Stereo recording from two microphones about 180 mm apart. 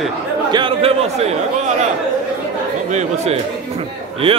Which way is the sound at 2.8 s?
40° right (ahead or behind).